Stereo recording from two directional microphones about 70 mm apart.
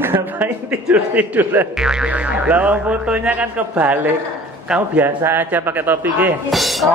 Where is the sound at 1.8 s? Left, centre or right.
Centre.